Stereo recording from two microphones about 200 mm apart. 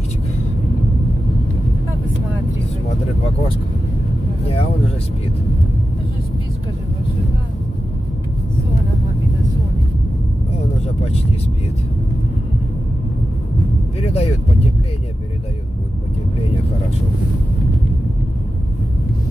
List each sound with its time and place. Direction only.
4.5 s vehicle: 30° left (ahead or behind)
14.0 s vehicle: 30° left (ahead or behind)